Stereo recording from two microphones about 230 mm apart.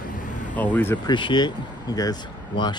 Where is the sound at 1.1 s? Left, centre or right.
Centre.